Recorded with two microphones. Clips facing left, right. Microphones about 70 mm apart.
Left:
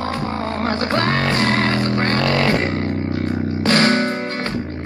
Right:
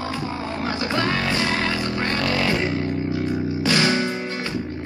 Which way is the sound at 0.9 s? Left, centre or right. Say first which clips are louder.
Left 3 dB; left.